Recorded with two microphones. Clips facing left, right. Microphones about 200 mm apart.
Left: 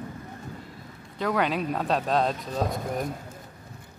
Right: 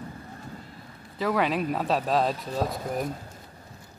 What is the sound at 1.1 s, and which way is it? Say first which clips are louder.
Speech: right 1 dB; centre (ahead or behind).